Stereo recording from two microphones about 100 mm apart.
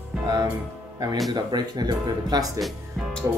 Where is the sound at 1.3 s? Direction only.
45° right (ahead or behind).